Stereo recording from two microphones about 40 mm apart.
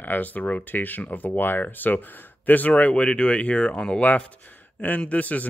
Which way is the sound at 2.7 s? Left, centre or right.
Left.